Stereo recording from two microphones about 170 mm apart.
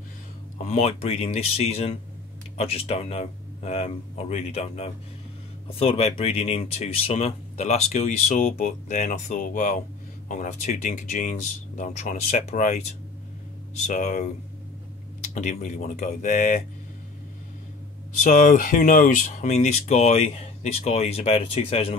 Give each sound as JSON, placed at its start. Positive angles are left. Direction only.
{"t": 0.6, "sound": "speech", "side_deg": 40}
{"t": 13.8, "sound": "speech", "side_deg": 45}
{"t": 15.3, "sound": "speech", "side_deg": 45}
{"t": 18.2, "sound": "speech", "side_deg": 50}